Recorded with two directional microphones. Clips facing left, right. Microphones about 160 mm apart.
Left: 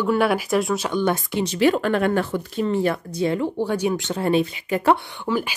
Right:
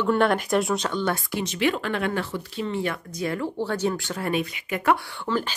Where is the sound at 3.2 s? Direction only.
20° left (ahead or behind).